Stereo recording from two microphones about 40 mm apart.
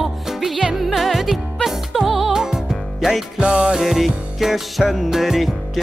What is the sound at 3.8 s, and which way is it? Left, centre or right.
Music, centre.